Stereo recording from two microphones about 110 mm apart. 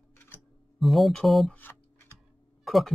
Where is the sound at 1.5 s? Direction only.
15° left (ahead or behind).